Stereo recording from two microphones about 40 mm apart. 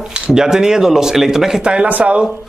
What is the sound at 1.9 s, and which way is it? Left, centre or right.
Speech, right.